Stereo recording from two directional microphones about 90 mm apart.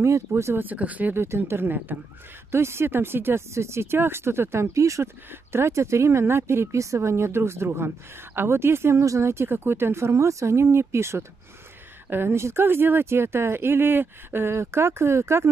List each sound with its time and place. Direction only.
0.0 s speech: 30° right (ahead or behind)
1.2 s speech: 30° right (ahead or behind)